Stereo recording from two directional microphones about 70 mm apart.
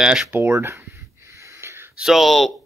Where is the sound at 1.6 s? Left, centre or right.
Right.